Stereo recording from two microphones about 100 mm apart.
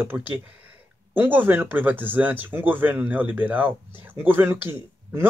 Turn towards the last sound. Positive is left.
turn(degrees=-25)  # may be behind; listen again after turning